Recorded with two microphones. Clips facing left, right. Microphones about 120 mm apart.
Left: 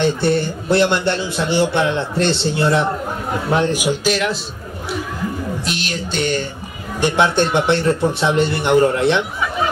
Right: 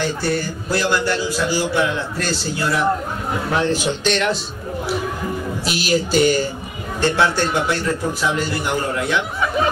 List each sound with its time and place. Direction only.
0.0 s a man's voice: 25° left (ahead or behind); by 4.4 s 5° left (ahead or behind)
5.7 s speech: 5° right (ahead or behind)
7.0 s a man's voice: 20° left (ahead or behind)